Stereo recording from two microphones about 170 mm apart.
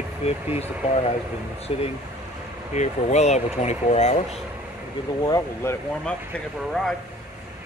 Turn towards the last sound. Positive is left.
turn(degrees=5)  # may be behind; listen again after turning